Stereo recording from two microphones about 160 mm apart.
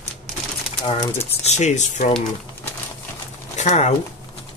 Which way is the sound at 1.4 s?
45° left (ahead or behind).